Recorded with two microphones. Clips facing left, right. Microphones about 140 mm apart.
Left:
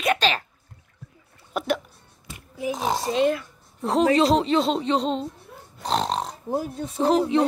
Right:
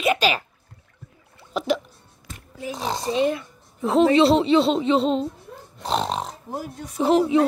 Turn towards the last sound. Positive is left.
turn(degrees=-5)  # may be behind; listen again after turning